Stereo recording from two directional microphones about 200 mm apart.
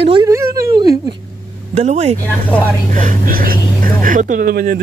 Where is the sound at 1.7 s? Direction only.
30° right (ahead or behind); by 4.8 s 45° right (ahead or behind).